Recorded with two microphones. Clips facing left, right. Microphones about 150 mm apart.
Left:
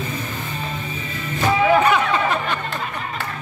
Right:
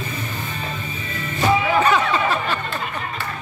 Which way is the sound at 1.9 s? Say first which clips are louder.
Even; 15° left (ahead or behind).